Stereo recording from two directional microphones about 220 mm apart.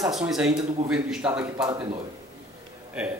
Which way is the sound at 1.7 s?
20° right (ahead or behind).